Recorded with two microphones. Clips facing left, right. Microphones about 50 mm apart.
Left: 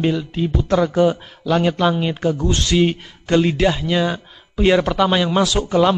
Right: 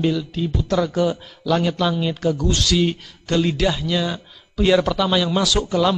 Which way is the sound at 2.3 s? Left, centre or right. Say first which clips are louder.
Even; centre.